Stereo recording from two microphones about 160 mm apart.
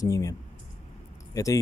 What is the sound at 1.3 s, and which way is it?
Speech, 20° left (ahead or behind).